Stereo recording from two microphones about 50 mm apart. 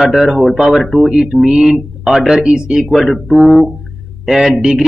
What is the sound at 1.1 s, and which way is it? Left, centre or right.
Speech, centre.